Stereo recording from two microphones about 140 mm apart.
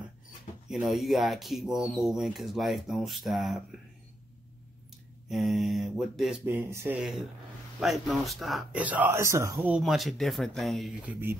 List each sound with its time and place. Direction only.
0.7 s speech: centre (ahead or behind)
5.3 s speech: centre (ahead or behind)
6.4 s speech: 15° right (ahead or behind)
7.0 s speech: 5° right (ahead or behind); by 9.7 s 20° right (ahead or behind)
9.7 s speech: 5° right (ahead or behind)